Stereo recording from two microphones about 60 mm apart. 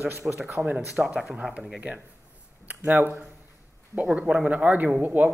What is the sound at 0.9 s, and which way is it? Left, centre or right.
Speech, centre.